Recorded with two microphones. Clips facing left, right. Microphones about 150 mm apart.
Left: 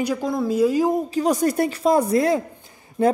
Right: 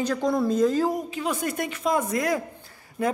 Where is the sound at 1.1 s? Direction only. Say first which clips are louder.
Left 8 dB; 40° left (ahead or behind).